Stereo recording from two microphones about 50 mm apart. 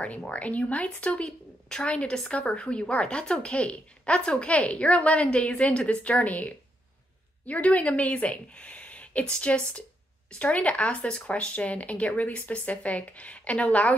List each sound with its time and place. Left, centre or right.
0.3 s speech: left